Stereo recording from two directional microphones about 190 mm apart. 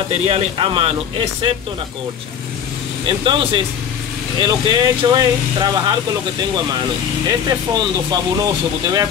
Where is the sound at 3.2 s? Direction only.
25° right (ahead or behind).